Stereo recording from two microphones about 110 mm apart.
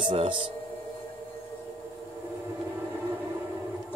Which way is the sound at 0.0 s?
50° right (ahead or behind).